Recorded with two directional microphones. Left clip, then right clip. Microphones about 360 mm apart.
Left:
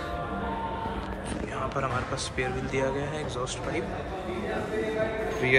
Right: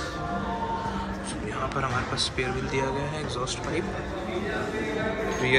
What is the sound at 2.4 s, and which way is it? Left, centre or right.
Speech, centre.